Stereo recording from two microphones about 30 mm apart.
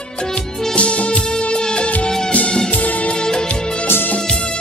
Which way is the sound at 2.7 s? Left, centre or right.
Left.